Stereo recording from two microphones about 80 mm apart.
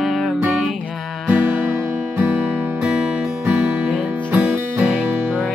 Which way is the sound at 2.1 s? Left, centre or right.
Centre.